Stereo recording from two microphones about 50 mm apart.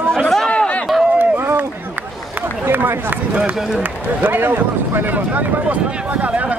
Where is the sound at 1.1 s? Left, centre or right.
Right.